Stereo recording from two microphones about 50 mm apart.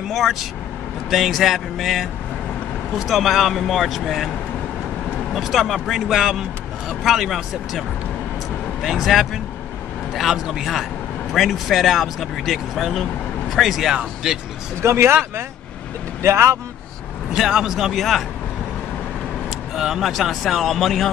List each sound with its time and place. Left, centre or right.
0.1 s speech: centre
5.3 s speech: centre
8.8 s speech: centre
13.9 s speech: centre
14.8 s speech: right
16.2 s speech: right
17.3 s speech: centre
17.7 s speech: centre
19.7 s speech: centre